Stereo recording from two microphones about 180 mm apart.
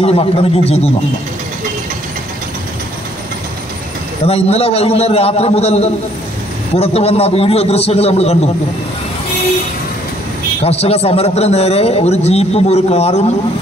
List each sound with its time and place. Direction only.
0.0 s a man's voice: 35° left (ahead or behind)
4.3 s a man's voice: 35° left (ahead or behind)
10.6 s a man's voice: 35° left (ahead or behind)